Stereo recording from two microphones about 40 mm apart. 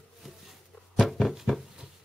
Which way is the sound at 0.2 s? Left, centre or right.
Centre.